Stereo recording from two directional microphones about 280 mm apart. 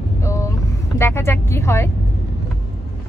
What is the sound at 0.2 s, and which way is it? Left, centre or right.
Vehicle, centre.